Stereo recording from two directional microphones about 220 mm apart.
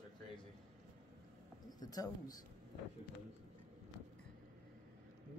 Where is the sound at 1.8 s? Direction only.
15° left (ahead or behind).